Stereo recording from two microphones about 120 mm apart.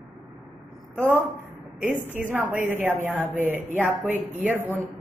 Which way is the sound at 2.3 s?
15° right (ahead or behind).